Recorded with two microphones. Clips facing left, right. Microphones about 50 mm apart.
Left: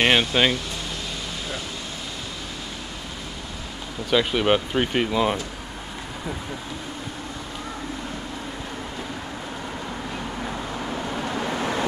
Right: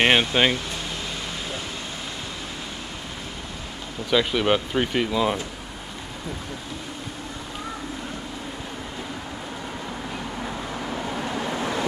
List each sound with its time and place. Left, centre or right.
0.0 s speech: centre
4.1 s speech: centre
11.3 s vehicle: left